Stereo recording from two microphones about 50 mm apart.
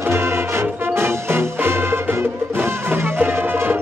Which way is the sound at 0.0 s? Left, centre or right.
Right.